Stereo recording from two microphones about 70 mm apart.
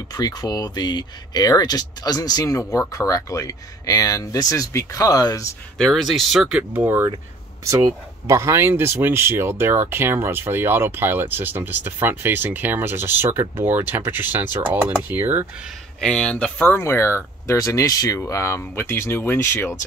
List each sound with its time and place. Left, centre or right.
0.1 s speech: left
5.8 s speech: centre
6.5 s speech: right
7.6 s speech: right
16.0 s speech: centre
16.8 s speech: left
18.6 s speech: left